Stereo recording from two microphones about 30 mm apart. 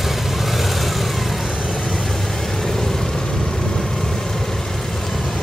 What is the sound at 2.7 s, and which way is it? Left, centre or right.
Vehicle, centre.